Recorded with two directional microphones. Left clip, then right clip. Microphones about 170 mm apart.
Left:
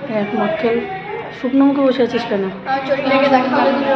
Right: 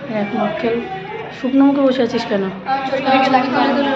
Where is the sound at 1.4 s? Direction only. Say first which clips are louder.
Right 1 dB; 5° left (ahead or behind).